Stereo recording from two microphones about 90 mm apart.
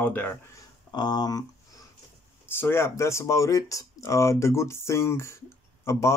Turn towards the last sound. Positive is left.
turn(degrees=30)  # may be behind; listen again after turning